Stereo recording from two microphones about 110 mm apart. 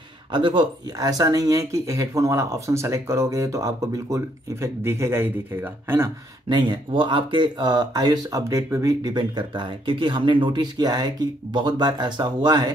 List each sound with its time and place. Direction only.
0.3 s speech: 45° right (ahead or behind); by 6.0 s 20° right (ahead or behind)
6.5 s speech: 45° right (ahead or behind)